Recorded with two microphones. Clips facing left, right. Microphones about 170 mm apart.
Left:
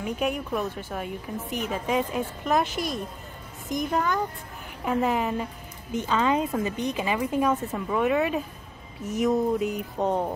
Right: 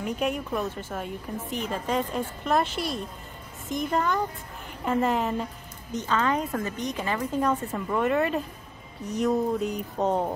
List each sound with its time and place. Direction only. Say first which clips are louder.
0.0 s a woman's voice: even; centre (ahead or behind)
6.0 s a woman's voice: left 2 dB; 15° left (ahead or behind); by 10.3 s 5° right (ahead or behind)